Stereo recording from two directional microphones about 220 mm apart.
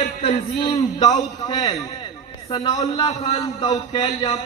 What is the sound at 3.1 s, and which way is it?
A man's voice, 30° left (ahead or behind).